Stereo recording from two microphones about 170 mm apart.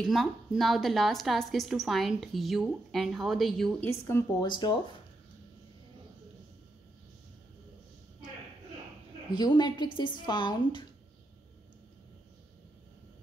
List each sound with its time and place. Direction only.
0.0 s a woman's voice: centre (ahead or behind)
3.9 s speech: 15° left (ahead or behind)
4.5 s a woman's voice: 25° left (ahead or behind)
9.3 s a woman's voice: 25° left (ahead or behind)